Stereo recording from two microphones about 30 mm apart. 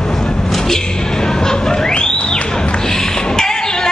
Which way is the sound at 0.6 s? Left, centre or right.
Centre.